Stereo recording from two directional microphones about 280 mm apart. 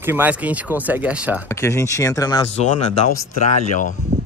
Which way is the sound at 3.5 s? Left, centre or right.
Left.